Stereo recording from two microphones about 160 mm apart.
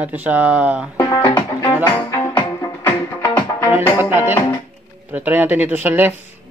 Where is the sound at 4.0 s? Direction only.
10° right (ahead or behind).